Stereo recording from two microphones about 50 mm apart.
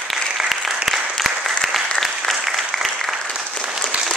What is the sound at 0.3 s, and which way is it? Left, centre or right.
Applause, centre.